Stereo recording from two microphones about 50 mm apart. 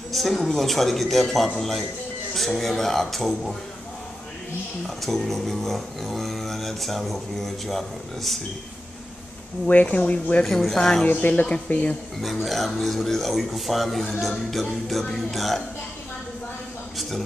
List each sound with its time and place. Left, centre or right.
0.1 s speech: centre
4.8 s speech: centre
9.7 s speech: left
10.4 s speech: centre
11.1 s speech: left
12.4 s speech: centre